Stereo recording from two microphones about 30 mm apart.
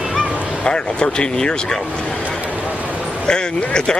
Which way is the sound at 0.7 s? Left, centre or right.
Left.